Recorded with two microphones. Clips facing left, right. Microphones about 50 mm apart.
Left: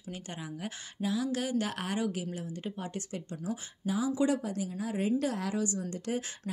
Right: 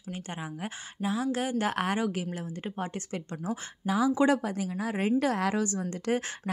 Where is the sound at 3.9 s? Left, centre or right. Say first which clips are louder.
Right 5 dB; right.